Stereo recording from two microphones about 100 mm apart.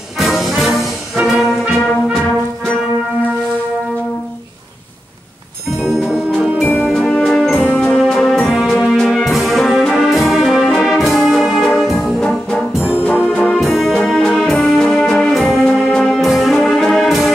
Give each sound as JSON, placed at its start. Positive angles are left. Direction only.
{"t": 0.2, "sound": "music", "side_deg": 0}
{"t": 1.2, "sound": "brass instrument", "side_deg": -5}
{"t": 2.1, "sound": "music", "side_deg": 5}
{"t": 5.8, "sound": "music", "side_deg": -5}
{"t": 6.8, "sound": "music", "side_deg": 5}
{"t": 9.1, "sound": "brass instrument", "side_deg": 0}
{"t": 13.0, "sound": "brass instrument", "side_deg": 15}
{"t": 13.6, "sound": "music", "side_deg": 0}